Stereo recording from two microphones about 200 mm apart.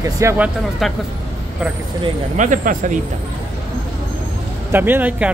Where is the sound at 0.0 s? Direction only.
15° right (ahead or behind).